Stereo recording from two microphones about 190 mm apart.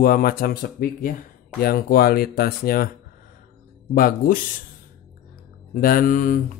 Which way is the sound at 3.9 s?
50° left (ahead or behind).